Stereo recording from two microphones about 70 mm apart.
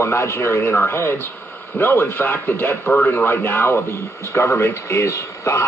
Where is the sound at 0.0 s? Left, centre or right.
Left.